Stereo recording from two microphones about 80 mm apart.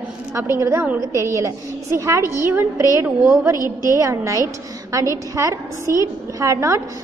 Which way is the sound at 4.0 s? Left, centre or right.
Right.